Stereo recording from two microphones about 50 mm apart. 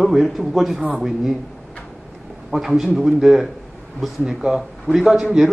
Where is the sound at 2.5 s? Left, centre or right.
Centre.